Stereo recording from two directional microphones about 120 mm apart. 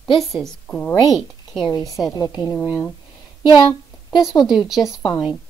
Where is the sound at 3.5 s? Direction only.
40° left (ahead or behind).